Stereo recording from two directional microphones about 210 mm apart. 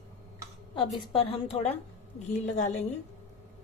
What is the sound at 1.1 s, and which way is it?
A woman's voice, 25° left (ahead or behind).